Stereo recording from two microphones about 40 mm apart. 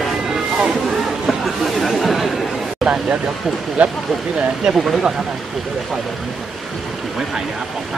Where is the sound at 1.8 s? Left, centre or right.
Centre.